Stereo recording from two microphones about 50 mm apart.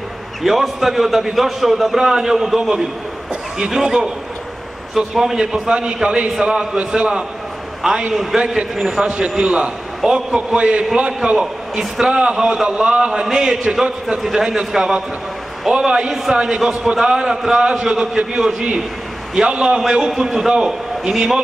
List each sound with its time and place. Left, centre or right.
0.4 s a man's voice: centre
16.6 s a man's voice: centre